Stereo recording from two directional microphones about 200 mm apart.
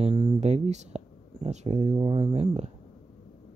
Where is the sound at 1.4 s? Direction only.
30° right (ahead or behind).